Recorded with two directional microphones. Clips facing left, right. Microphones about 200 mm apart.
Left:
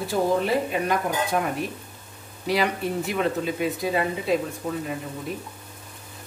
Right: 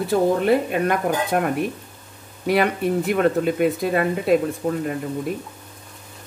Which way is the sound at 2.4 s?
55° right (ahead or behind).